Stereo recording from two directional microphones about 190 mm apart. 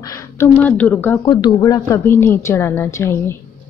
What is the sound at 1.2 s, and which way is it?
Speech, 25° left (ahead or behind).